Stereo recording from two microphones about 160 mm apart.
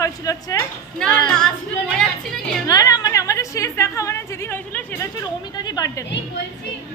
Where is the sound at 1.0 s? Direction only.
5° left (ahead or behind).